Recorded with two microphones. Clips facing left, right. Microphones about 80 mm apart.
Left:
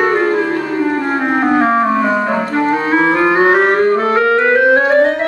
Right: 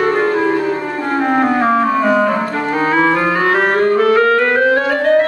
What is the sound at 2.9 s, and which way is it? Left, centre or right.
Clarinet, left.